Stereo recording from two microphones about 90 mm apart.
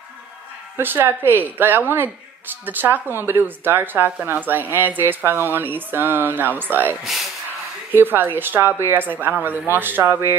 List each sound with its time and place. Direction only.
0.7 s speech: 25° right (ahead or behind)